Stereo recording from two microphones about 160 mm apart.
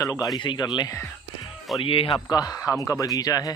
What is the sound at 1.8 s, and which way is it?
Speech, 35° left (ahead or behind).